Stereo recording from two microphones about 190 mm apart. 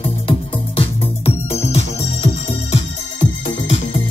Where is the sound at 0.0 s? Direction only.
30° left (ahead or behind).